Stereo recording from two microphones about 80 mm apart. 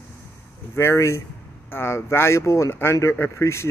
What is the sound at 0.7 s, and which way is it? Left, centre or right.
Speech, left.